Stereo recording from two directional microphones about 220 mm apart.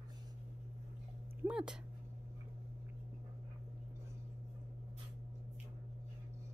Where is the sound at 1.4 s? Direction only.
5° right (ahead or behind).